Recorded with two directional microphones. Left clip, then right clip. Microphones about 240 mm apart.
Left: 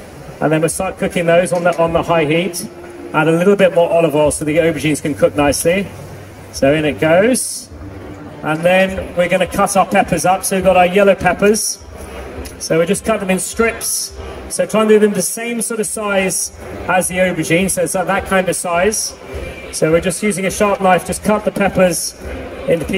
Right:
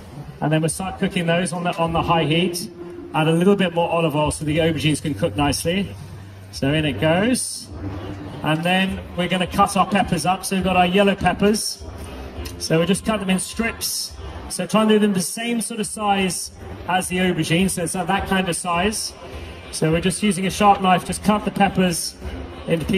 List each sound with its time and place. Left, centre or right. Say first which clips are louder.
0.4 s a man's voice: left 7 dB; centre
8.5 s a man's voice: left 8 dB; centre
12.7 s a man's voice: left 6 dB; centre